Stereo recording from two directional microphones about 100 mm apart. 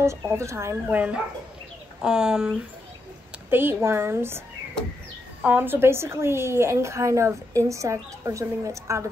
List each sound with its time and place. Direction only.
0.0 s a woman's voice: 30° right (ahead or behind)
0.9 s speech: 15° right (ahead or behind)
3.4 s a woman's voice: 20° right (ahead or behind)
5.4 s a woman's voice: 15° right (ahead or behind); by 9.1 s 30° right (ahead or behind)